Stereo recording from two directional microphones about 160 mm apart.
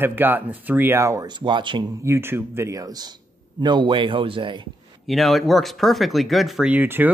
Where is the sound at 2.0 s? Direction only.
15° right (ahead or behind); by 4.7 s 30° right (ahead or behind).